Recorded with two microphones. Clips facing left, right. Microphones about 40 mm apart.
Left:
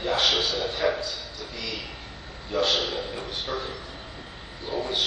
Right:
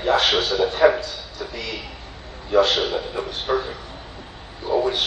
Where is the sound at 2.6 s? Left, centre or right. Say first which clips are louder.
Right 4 dB; right.